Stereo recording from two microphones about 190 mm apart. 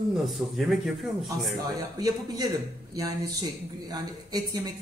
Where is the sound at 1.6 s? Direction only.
20° right (ahead or behind).